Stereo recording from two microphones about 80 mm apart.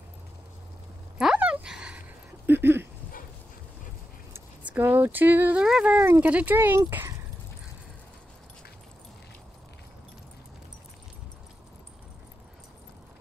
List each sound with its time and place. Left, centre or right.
1.2 s dog: centre
2.4 s a sound: right
4.6 s speech: right
5.6 s speech: centre
5.9 s speech: right